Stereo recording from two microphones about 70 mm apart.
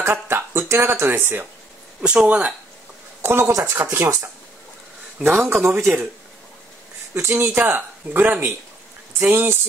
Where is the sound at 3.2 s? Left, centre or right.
Right.